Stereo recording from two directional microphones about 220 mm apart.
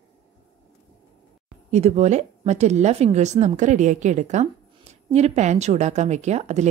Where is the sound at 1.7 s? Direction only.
30° right (ahead or behind).